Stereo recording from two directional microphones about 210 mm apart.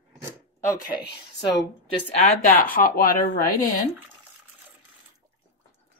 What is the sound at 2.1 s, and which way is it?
Speech, 35° left (ahead or behind).